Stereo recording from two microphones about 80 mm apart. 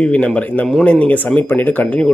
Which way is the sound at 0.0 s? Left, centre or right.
Centre.